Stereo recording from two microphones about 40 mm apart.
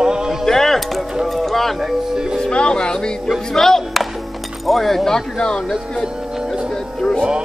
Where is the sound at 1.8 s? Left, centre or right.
Centre.